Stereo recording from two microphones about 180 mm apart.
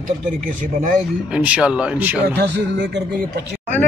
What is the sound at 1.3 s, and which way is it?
Speech, 5° right (ahead or behind).